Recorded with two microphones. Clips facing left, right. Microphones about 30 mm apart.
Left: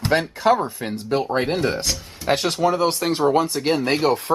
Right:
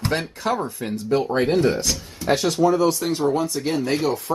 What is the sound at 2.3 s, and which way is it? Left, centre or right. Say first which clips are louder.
Speech: right 1 dB; left.